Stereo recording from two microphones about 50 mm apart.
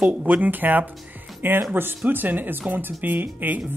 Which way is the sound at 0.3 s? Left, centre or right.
Right.